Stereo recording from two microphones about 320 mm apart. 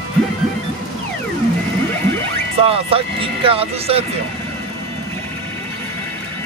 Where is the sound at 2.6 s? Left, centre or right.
Centre.